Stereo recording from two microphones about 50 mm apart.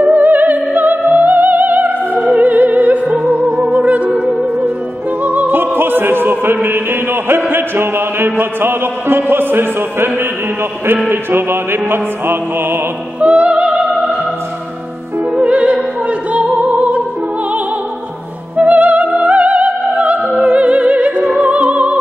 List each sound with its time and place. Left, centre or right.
0.0 s music: right
5.2 s opera: right
11.1 s music: right
13.2 s opera: right
15.3 s opera: right
16.6 s music: right
18.7 s music: right